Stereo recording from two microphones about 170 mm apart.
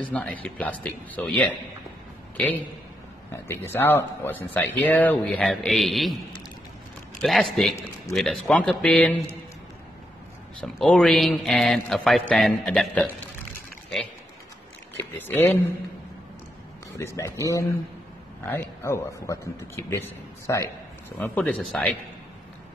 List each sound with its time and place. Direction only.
0.0 s speech: 10° left (ahead or behind)
3.4 s speech: 15° left (ahead or behind)
7.2 s speech: centre (ahead or behind)
10.6 s speech: centre (ahead or behind)
15.0 s speech: 10° left (ahead or behind)
17.0 s speech: 15° left (ahead or behind)